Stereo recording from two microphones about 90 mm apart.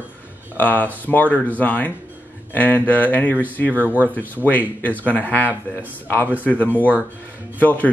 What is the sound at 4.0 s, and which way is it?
Speech, 20° left (ahead or behind).